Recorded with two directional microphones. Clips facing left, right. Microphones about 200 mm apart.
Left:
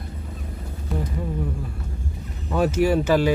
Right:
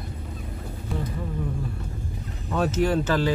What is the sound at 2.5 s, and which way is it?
Speech, 10° left (ahead or behind).